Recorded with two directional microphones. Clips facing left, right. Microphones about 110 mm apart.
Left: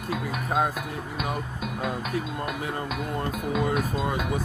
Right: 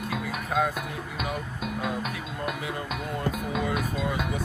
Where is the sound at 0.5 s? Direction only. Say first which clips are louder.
Left 1 dB; 35° left (ahead or behind).